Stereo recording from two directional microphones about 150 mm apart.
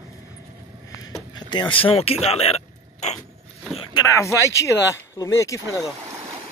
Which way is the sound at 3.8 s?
30° left (ahead or behind).